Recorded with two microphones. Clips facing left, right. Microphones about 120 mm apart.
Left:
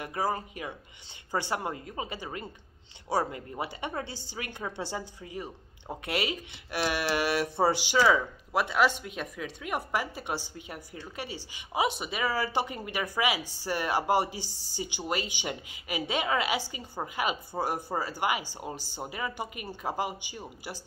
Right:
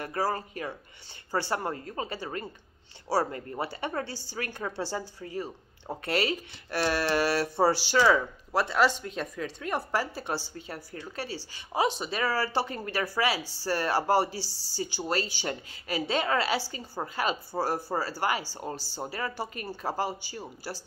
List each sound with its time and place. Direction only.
0.0 s a woman's voice: 15° left (ahead or behind)